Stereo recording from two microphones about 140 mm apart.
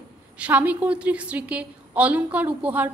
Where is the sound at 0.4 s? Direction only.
10° right (ahead or behind).